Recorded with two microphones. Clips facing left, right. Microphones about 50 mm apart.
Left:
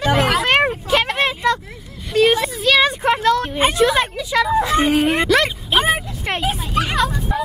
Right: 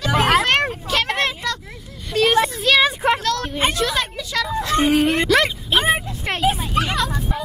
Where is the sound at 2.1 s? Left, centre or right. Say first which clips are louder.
Left 1 dB; centre.